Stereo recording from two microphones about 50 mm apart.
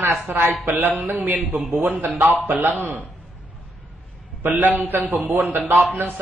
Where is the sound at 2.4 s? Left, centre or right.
Right.